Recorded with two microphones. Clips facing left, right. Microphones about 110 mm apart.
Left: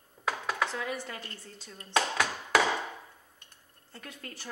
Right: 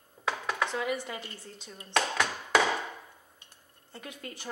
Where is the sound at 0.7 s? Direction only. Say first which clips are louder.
Right 3 dB; 15° right (ahead or behind).